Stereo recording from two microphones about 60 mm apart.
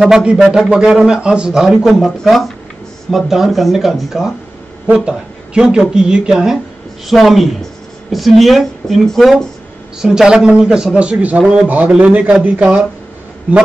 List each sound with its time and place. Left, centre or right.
0.0 s a man's voice: centre
10.0 s a man's voice: centre